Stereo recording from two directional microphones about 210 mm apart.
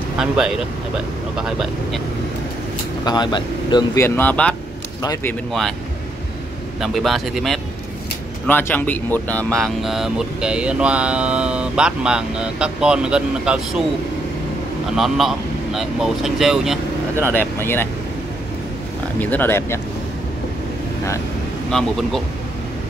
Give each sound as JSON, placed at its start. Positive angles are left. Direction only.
{"t": 1.3, "sound": "vehicle", "side_deg": -5}
{"t": 3.1, "sound": "speech", "side_deg": 20}
{"t": 5.0, "sound": "speech", "side_deg": 15}
{"t": 5.5, "sound": "vehicle", "side_deg": 0}
{"t": 6.8, "sound": "vehicle", "side_deg": 0}
{"t": 8.5, "sound": "speech", "side_deg": 10}
{"t": 9.6, "sound": "vehicle", "side_deg": 0}
{"t": 15.0, "sound": "vehicle", "side_deg": 0}
{"t": 17.1, "sound": "speech", "side_deg": -10}
{"t": 17.6, "sound": "speech", "side_deg": 10}
{"t": 19.1, "sound": "speech", "side_deg": 10}
{"t": 21.6, "sound": "vehicle", "side_deg": 0}